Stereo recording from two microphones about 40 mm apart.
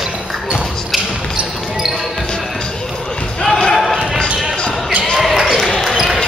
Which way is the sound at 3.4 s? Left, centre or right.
Centre.